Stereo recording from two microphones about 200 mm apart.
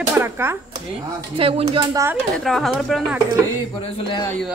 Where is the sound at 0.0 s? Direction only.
10° right (ahead or behind).